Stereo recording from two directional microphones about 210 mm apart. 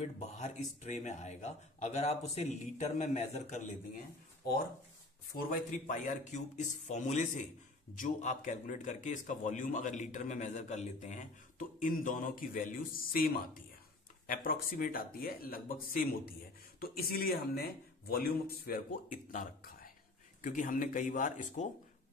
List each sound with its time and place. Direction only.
0.2 s a man's voice: 30° left (ahead or behind)
5.4 s a man's voice: 35° left (ahead or behind)
19.3 s a sound: 45° left (ahead or behind)
20.4 s a man's voice: 40° left (ahead or behind)